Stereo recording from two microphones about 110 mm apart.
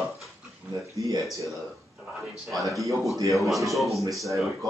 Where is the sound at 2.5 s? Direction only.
Centre (ahead or behind).